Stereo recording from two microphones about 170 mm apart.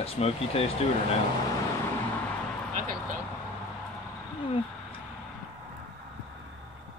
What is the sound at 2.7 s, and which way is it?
Vehicle, 50° right (ahead or behind).